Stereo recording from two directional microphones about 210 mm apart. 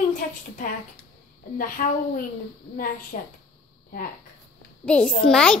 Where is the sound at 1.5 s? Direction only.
40° left (ahead or behind).